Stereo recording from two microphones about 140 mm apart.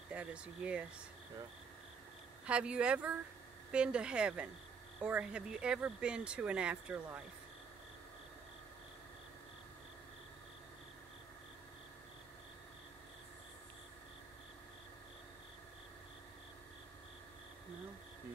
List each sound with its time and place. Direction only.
0.1 s speech: 5° right (ahead or behind)
2.4 s speech: 10° right (ahead or behind)